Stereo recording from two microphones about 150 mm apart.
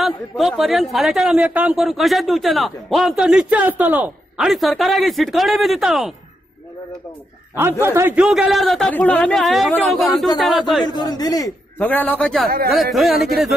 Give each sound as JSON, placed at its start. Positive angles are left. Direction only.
{"t": 0.0, "sound": "a man's voice", "side_deg": 0}
{"t": 7.8, "sound": "a man's voice", "side_deg": -15}
{"t": 8.2, "sound": "a man's voice", "side_deg": -5}
{"t": 10.9, "sound": "a man's voice", "side_deg": 25}
{"t": 11.8, "sound": "a man's voice", "side_deg": 10}